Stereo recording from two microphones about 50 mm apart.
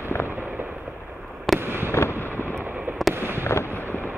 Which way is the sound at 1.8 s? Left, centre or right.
Left.